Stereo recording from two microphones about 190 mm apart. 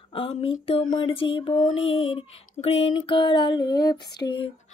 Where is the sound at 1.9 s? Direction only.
90° left.